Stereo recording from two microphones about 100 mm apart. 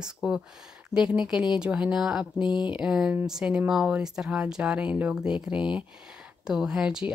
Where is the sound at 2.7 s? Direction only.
5° right (ahead or behind).